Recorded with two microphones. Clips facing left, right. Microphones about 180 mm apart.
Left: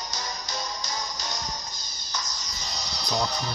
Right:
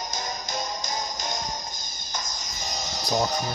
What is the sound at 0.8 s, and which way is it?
Music, 50° right (ahead or behind).